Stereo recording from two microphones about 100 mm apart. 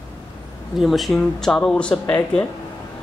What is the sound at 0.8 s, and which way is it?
Speech, centre (ahead or behind).